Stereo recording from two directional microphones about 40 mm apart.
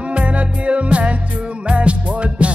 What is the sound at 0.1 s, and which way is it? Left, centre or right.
Music, right.